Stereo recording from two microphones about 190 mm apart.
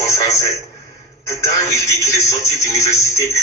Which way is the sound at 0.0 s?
15° left (ahead or behind).